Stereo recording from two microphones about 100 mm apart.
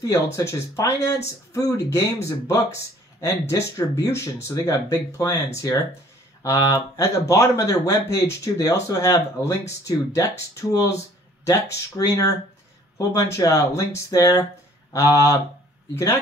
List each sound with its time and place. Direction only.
0.0 s speech: 30° left (ahead or behind)
6.4 s speech: 35° left (ahead or behind)